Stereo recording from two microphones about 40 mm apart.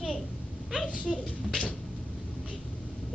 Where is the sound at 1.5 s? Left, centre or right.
Left.